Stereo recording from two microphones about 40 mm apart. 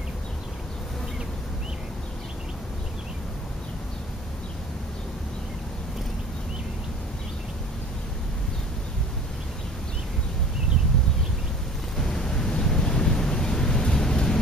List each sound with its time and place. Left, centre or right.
12.0 s waves: centre